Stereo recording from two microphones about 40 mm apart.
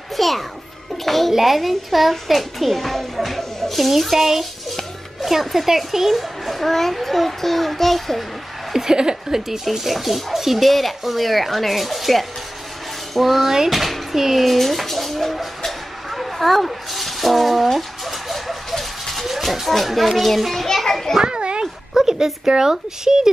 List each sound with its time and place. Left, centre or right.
0.2 s speech: centre
4.3 s music: centre
5.2 s speech: centre
8.7 s speech: centre
13.7 s a sound: centre
20.6 s children playing: centre
21.2 s a sound: right
21.9 s speech: centre